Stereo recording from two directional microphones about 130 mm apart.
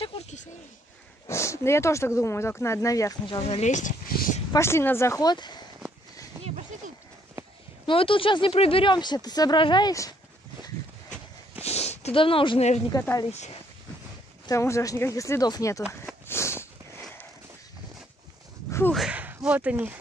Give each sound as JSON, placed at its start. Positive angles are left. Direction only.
{"t": 1.2, "sound": "speech", "side_deg": 20}
{"t": 3.3, "sound": "speech", "side_deg": 45}
{"t": 4.5, "sound": "speech", "side_deg": 20}
{"t": 7.8, "sound": "speech", "side_deg": 40}
{"t": 11.6, "sound": "a sound", "side_deg": 55}
{"t": 12.9, "sound": "speech", "side_deg": 30}
{"t": 14.4, "sound": "speech", "side_deg": 20}
{"t": 16.3, "sound": "a sound", "side_deg": 20}
{"t": 18.7, "sound": "a sound", "side_deg": 20}
{"t": 18.9, "sound": "speech", "side_deg": -10}